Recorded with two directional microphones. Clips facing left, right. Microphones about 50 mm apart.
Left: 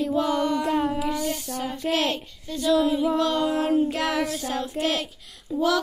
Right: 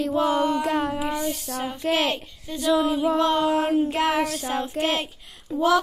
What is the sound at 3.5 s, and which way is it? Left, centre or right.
Child singing, centre.